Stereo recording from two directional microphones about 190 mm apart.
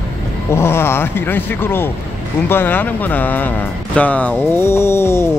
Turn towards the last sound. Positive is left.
turn(degrees=15)  # may be behind; listen again after turning